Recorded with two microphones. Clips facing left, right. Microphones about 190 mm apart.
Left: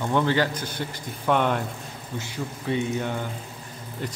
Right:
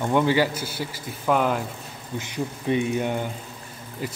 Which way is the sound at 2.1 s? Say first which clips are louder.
Right 3 dB; 15° right (ahead or behind).